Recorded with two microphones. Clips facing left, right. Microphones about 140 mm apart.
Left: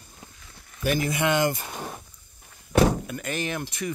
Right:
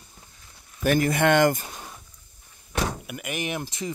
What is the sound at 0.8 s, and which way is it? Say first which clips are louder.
Speech: right 4 dB; 50° right (ahead or behind).